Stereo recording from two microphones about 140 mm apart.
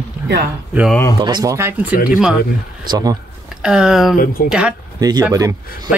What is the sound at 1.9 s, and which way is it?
Speech, 80° left.